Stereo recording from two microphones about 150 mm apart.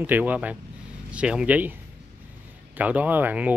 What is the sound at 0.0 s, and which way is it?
Speech, 10° right (ahead or behind).